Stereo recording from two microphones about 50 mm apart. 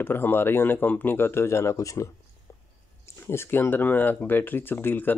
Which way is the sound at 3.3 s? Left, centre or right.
Left.